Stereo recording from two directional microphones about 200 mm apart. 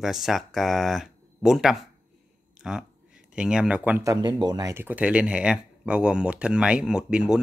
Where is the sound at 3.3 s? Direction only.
5° right (ahead or behind).